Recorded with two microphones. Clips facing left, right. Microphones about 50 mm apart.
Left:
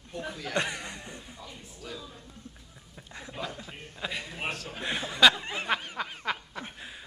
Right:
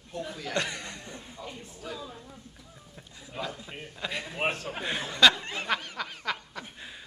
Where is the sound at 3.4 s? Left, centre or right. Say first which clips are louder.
Right 2 dB; centre.